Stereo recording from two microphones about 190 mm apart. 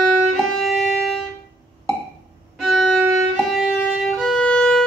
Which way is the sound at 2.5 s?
Centre (ahead or behind).